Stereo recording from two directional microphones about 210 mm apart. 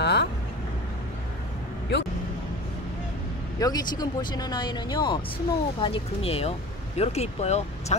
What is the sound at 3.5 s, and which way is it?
Speech, 15° left (ahead or behind).